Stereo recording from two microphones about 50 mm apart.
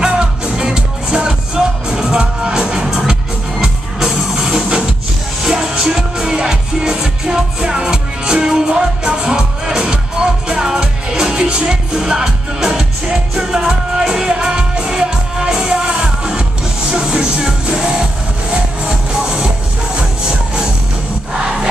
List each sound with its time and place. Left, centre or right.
0.0 s music: centre